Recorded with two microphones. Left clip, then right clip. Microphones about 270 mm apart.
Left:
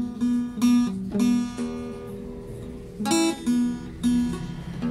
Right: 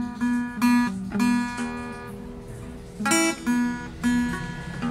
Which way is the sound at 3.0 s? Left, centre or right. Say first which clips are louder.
Right 1 dB; centre.